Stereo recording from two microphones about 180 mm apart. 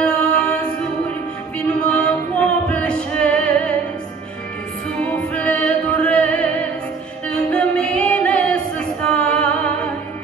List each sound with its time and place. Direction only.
0.0 s a capella: 5° left (ahead or behind)
1.7 s music: 5° left (ahead or behind)
5.0 s music: 10° left (ahead or behind)